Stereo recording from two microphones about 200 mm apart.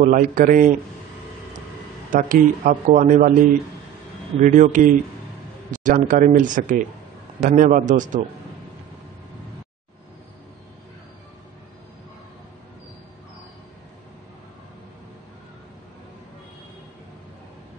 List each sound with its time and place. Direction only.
0.0 s speech: 45° right (ahead or behind)
2.1 s speech: 40° right (ahead or behind)
4.4 s speech: 40° right (ahead or behind)